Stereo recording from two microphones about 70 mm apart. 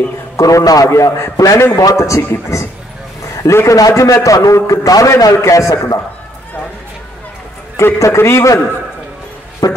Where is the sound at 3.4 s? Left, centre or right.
Left.